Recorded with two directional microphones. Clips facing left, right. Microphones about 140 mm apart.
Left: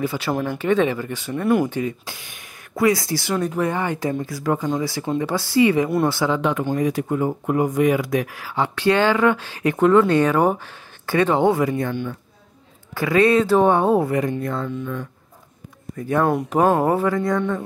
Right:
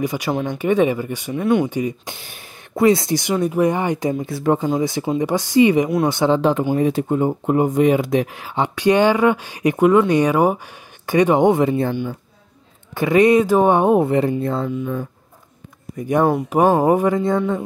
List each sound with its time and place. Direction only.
0.0 s speech: 15° right (ahead or behind)
1.3 s speech: centre (ahead or behind)
1.7 s speech: 15° right (ahead or behind)
2.1 s speech: 30° right (ahead or behind)
16.0 s speech: 15° right (ahead or behind)
16.3 s speech: 5° right (ahead or behind); by 17.4 s 20° right (ahead or behind)